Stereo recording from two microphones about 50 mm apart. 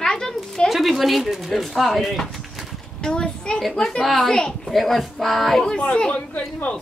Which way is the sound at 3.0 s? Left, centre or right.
Centre.